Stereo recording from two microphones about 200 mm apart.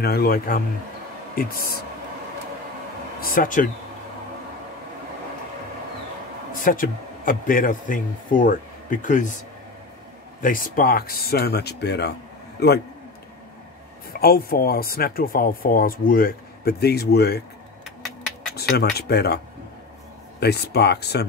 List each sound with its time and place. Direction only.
0.0 s speech: 50° left (ahead or behind)
3.2 s speech: 45° left (ahead or behind)
6.6 s speech: 45° left (ahead or behind)
10.4 s a man's voice: 45° left (ahead or behind)
14.2 s speech: 50° left (ahead or behind)
18.6 s speech: 55° left (ahead or behind)